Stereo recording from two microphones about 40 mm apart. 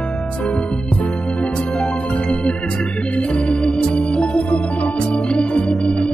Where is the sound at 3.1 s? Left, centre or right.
Left.